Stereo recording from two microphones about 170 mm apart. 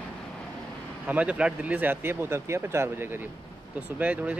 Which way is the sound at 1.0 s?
10° right (ahead or behind).